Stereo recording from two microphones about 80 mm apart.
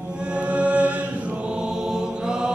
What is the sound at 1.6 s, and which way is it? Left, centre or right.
Chant, centre.